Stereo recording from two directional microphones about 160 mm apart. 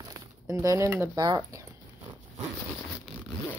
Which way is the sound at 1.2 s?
25° right (ahead or behind).